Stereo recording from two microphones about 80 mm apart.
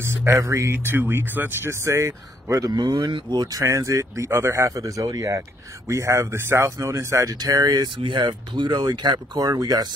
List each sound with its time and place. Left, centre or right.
0.1 s speech: right
1.7 s speech: right
2.7 s speech: right
3.6 s speech: right
5.0 s speech: right
5.9 s speech: right
8.0 s speech: right